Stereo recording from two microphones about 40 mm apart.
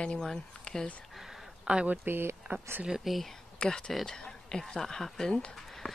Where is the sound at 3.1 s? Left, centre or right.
Centre.